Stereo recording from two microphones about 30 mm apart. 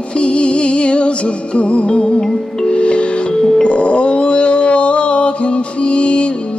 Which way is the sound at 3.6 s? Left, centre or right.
Left.